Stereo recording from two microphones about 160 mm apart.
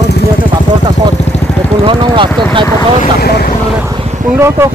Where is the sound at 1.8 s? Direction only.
30° right (ahead or behind).